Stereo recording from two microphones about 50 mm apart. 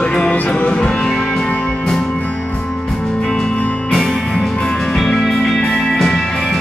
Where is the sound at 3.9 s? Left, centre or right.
Centre.